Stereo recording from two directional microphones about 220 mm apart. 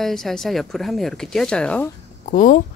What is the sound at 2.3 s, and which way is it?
Speech, 35° left (ahead or behind).